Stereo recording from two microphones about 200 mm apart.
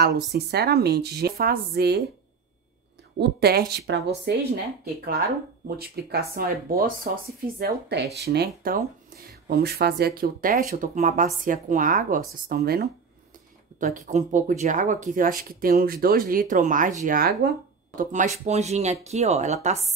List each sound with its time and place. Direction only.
0.0 s speech: 55° right (ahead or behind)
3.2 s speech: 55° right (ahead or behind); by 19.8 s 35° right (ahead or behind)